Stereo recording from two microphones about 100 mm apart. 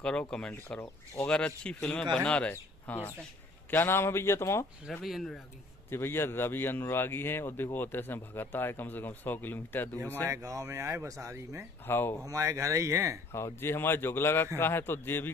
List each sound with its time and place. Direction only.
0.0 s speech: 10° left (ahead or behind)
0.7 s a man's voice: 20° left (ahead or behind)
1.3 s a man's voice: 10° left (ahead or behind); by 4.6 s 25° left (ahead or behind)
5.0 s speech: centre (ahead or behind)
5.9 s a man's voice: 25° left (ahead or behind)
10.3 s speech: 30° right (ahead or behind)
11.8 s a man's voice: 20° left (ahead or behind)
12.3 s speech: 30° right (ahead or behind)
13.3 s a man's voice: 25° left (ahead or behind)